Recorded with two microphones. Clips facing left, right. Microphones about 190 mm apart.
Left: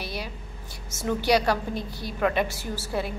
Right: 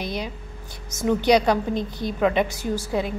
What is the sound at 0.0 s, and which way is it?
A woman's voice, 20° right (ahead or behind).